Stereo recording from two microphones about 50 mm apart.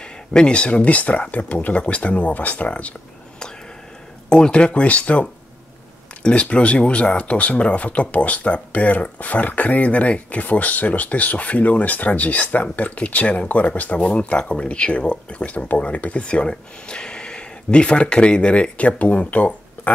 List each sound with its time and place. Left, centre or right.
0.0 s speech: centre
4.3 s speech: centre